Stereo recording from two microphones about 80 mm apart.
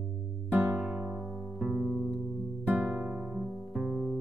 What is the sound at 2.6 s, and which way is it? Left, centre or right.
Music, centre.